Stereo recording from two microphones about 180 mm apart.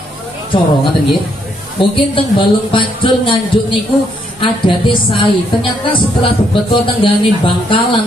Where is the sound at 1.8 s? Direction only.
30° left (ahead or behind).